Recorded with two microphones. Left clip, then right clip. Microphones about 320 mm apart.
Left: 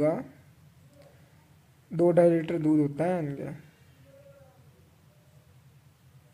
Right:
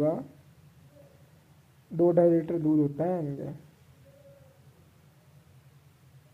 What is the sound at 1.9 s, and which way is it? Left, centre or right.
Speech, centre.